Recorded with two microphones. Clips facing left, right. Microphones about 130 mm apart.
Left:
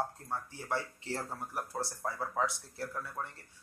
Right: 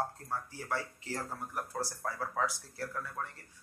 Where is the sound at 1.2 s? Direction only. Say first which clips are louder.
Even; centre (ahead or behind).